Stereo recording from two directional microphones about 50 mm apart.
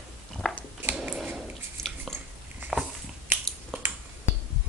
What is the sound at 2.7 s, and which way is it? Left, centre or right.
Dog, centre.